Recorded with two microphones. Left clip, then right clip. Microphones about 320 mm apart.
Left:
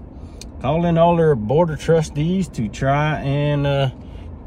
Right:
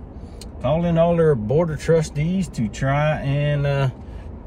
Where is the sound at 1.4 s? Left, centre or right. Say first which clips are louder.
Left 3 dB; centre.